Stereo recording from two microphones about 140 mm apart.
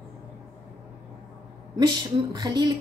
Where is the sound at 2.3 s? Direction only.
30° right (ahead or behind).